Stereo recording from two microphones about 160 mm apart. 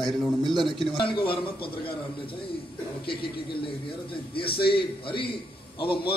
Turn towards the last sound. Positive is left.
turn(degrees=30)  # may be behind; listen again after turning